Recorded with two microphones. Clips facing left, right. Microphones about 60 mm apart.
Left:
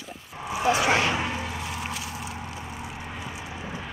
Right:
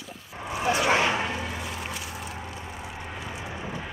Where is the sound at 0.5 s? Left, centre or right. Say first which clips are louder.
Left 2 dB; centre.